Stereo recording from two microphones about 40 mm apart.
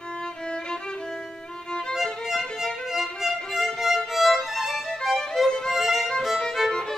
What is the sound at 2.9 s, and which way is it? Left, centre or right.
Violin, centre.